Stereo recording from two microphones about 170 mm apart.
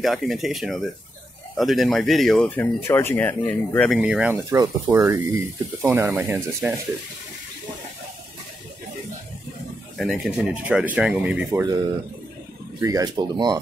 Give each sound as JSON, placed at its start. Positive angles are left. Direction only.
{"t": 0.0, "sound": "speech", "side_deg": 0}
{"t": 2.6, "sound": "speech", "side_deg": 15}
{"t": 4.0, "sound": "speech", "side_deg": -5}
{"t": 9.9, "sound": "speech", "side_deg": 0}
{"t": 12.8, "sound": "speech", "side_deg": -20}